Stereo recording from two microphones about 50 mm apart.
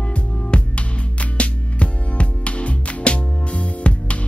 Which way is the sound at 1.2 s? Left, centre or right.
Left.